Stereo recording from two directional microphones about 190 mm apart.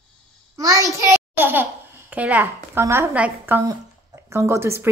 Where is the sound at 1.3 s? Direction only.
10° right (ahead or behind).